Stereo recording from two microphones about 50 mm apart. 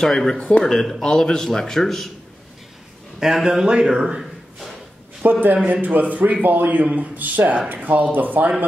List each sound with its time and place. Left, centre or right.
0.0 s a man's voice: centre
0.4 s speech: left
0.7 s a man's voice: centre
3.2 s a man's voice: centre
5.2 s speech: right